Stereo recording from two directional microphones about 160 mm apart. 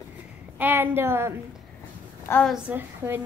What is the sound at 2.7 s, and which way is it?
Speech, 10° right (ahead or behind).